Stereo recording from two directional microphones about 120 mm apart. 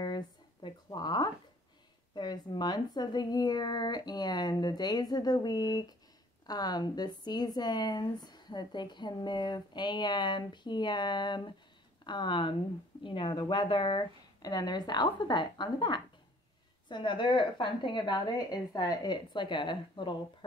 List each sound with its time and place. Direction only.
0.0 s a sound: 40° left (ahead or behind)
2.1 s speech: 40° left (ahead or behind)
14.4 s speech: 35° left (ahead or behind)